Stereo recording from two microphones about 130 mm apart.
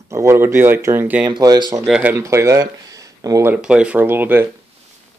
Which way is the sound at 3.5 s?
10° right (ahead or behind).